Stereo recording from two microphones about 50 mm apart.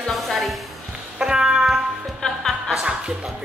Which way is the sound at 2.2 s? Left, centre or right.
Centre.